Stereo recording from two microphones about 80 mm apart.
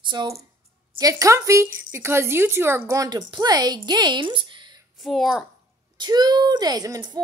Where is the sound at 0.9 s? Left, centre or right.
Right.